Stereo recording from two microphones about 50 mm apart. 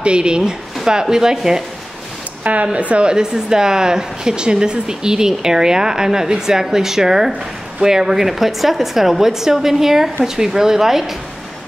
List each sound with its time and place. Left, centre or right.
0.0 s speech: centre
2.4 s speech: right; by 11.1 s centre